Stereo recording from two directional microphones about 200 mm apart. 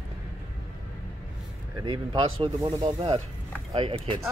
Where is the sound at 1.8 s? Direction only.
25° right (ahead or behind).